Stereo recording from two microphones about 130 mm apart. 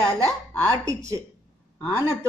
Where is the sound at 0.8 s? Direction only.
25° right (ahead or behind).